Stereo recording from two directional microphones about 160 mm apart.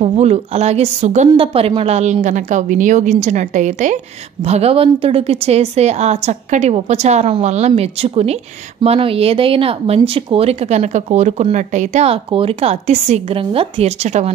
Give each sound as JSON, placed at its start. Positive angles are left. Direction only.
{"t": 0.0, "sound": "a woman's voice", "side_deg": -40}